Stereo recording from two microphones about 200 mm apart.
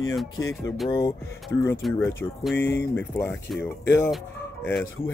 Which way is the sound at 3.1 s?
10° left (ahead or behind).